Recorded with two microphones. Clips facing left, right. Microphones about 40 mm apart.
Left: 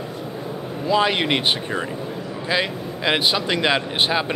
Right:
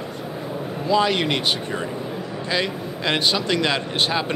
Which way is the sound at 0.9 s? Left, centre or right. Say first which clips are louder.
Left 1 dB; centre.